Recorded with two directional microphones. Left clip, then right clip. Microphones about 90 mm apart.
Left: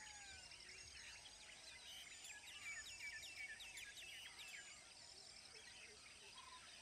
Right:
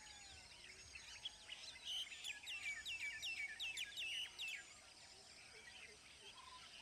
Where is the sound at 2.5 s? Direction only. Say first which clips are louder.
Right 6 dB; 30° right (ahead or behind).